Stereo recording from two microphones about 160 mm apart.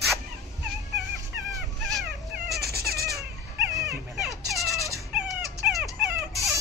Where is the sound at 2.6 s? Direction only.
75° right (ahead or behind).